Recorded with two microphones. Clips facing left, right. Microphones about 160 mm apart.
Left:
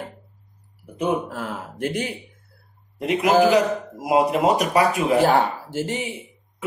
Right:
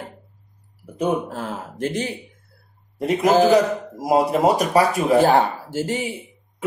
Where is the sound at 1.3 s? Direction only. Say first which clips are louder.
Right 1 dB; 30° right (ahead or behind).